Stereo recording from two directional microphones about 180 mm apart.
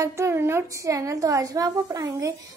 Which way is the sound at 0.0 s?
15° right (ahead or behind).